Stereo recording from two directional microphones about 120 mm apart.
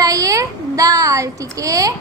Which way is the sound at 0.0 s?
30° right (ahead or behind).